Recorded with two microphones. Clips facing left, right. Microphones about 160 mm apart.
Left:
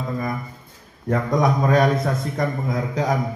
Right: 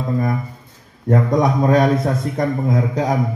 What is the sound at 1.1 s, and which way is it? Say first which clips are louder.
A man's voice: right 4 dB; 30° right (ahead or behind).